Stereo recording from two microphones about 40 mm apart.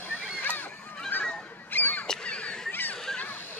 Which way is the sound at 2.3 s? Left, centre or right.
Left.